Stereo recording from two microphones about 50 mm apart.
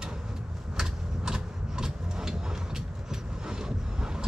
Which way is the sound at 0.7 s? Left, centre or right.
Centre.